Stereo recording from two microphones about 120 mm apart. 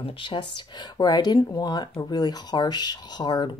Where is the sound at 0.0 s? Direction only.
45° left (ahead or behind).